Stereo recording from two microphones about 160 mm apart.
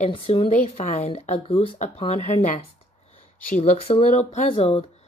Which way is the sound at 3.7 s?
40° left (ahead or behind).